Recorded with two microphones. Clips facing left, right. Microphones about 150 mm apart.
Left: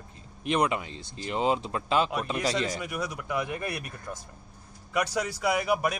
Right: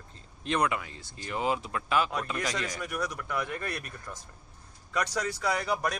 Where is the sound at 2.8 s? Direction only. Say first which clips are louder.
Left 1 dB; 10° left (ahead or behind).